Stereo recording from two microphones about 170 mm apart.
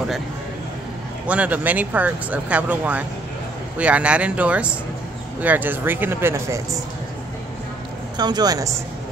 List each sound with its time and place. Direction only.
1.2 s speech: 10° right (ahead or behind)
8.2 s speech: 25° right (ahead or behind)